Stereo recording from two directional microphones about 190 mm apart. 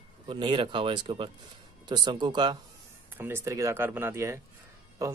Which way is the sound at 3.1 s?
10° right (ahead or behind).